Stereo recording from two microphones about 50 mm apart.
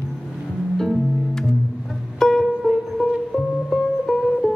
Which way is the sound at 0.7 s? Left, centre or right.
Centre.